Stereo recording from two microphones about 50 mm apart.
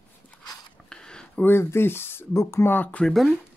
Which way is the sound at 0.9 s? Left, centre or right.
Centre.